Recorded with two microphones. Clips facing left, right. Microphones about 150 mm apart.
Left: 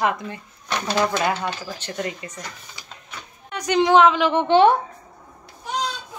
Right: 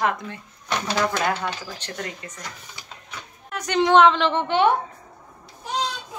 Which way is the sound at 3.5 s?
Centre (ahead or behind).